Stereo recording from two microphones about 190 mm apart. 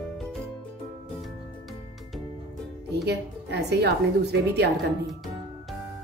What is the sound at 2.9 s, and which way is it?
A woman's voice, 60° right (ahead or behind).